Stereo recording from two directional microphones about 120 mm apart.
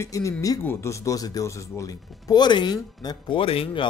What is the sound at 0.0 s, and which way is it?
Speech, 25° left (ahead or behind).